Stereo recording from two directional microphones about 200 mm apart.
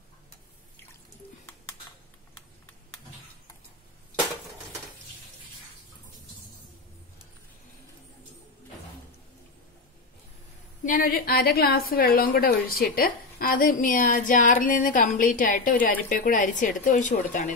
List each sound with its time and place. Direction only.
10.8 s a woman's voice: 45° left (ahead or behind)